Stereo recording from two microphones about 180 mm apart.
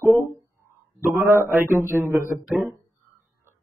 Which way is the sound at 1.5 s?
15° right (ahead or behind).